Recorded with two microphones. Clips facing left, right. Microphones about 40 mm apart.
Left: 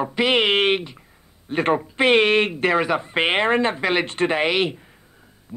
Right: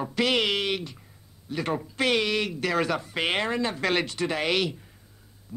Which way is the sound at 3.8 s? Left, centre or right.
Left.